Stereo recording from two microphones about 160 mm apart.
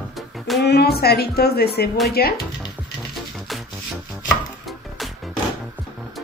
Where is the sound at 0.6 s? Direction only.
90° left; by 2.3 s 75° left (ahead or behind).